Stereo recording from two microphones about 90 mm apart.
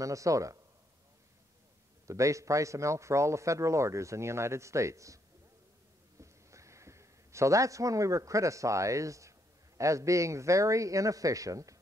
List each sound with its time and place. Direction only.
0.0 s a man's voice: 35° right (ahead or behind)
2.0 s a man's voice: 35° right (ahead or behind)
6.2 s a man's voice: 35° right (ahead or behind)